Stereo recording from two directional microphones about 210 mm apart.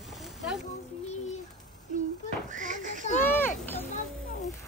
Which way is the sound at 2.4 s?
35° right (ahead or behind).